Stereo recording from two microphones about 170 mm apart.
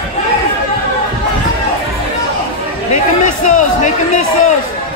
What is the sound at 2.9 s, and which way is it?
Speech, 50° left (ahead or behind).